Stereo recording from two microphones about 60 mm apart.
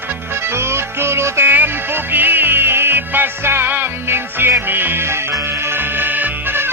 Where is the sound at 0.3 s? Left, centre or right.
Right.